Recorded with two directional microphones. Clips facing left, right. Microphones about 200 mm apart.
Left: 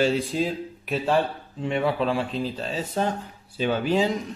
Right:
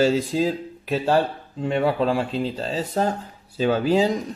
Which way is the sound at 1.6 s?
40° right (ahead or behind).